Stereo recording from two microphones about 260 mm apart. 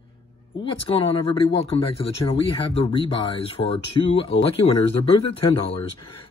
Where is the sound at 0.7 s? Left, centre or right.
Left.